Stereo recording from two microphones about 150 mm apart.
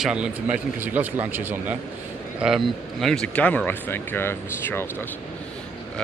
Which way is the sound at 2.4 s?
Centre (ahead or behind).